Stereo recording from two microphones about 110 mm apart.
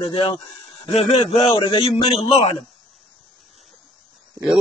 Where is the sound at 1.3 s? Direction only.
60° left (ahead or behind).